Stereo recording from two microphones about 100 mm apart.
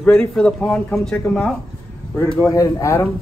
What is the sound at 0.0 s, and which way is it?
A man's voice, 10° left (ahead or behind).